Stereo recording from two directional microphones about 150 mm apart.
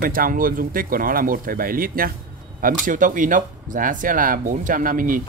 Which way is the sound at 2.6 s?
60° right (ahead or behind).